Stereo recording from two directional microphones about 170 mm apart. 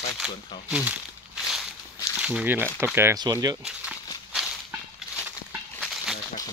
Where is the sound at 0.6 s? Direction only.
5° right (ahead or behind).